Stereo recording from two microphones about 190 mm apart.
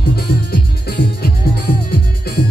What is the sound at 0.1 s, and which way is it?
Music, 55° left (ahead or behind).